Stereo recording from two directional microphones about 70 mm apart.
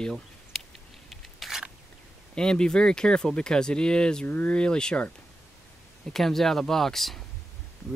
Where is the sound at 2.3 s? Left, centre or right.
Centre.